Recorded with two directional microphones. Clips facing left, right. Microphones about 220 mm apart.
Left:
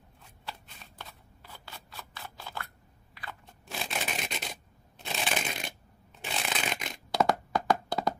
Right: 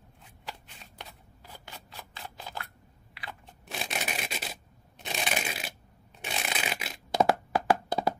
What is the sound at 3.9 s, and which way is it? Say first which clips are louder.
Rub: even; 5° right (ahead or behind).